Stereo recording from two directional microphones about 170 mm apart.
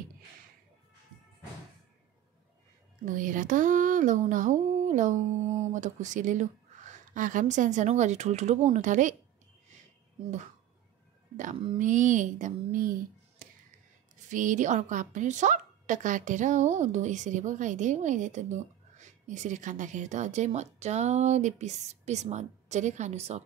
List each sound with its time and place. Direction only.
3.1 s a woman's voice: 50° right (ahead or behind)
11.5 s speech: 30° right (ahead or behind)
11.8 s a woman's voice: 45° right (ahead or behind)